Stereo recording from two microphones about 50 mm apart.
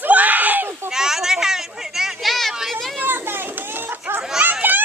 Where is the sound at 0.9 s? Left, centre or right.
Centre.